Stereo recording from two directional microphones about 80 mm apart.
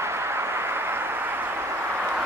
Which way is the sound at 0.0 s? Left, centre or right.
Right.